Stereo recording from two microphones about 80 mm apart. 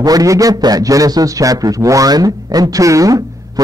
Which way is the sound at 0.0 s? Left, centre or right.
Right.